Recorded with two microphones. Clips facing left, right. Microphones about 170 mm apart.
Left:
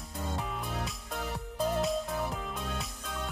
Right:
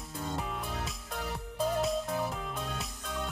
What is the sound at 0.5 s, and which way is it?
Music, centre (ahead or behind).